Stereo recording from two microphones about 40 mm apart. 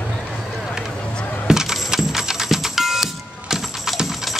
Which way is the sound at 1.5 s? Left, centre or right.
Centre.